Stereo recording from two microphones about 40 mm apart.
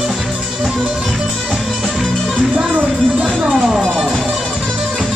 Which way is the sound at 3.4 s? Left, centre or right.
Centre.